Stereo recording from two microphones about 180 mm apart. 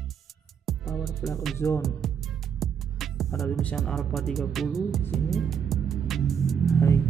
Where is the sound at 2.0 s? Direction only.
Centre (ahead or behind).